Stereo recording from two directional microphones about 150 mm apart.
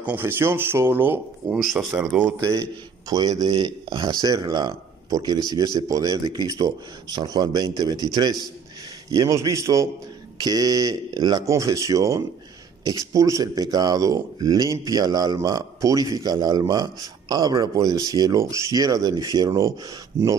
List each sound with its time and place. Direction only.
0.0 s speech: 15° right (ahead or behind)
1.6 s speech: centre (ahead or behind)
3.1 s speech: 25° right (ahead or behind)